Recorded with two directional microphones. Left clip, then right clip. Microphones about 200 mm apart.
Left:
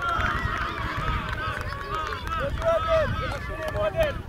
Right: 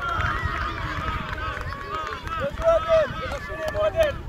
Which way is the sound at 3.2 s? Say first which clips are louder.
Right 2 dB; 50° right (ahead or behind).